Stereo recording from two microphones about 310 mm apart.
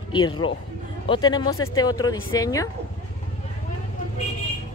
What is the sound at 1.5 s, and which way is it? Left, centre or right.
Speech, left.